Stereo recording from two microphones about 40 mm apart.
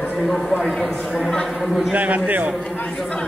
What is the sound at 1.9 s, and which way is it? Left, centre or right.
Speech, right.